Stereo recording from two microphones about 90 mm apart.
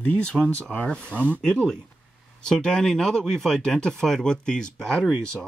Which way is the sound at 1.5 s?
10° left (ahead or behind).